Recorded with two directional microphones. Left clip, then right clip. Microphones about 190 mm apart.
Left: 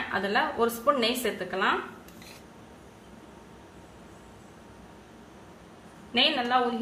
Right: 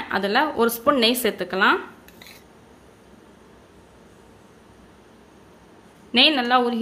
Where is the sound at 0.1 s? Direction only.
55° right (ahead or behind).